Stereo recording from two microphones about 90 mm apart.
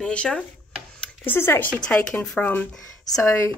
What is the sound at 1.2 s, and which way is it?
Speech, 25° left (ahead or behind).